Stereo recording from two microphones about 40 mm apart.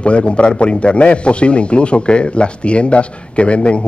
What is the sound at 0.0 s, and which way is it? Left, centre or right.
A man's voice, left.